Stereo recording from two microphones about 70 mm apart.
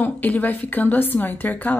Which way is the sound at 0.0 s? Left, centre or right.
Left.